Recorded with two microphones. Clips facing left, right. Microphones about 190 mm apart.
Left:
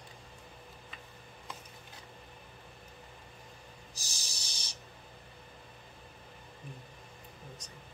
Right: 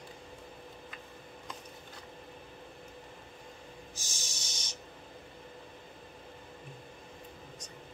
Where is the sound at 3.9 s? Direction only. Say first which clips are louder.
Right 4 dB; 35° left (ahead or behind).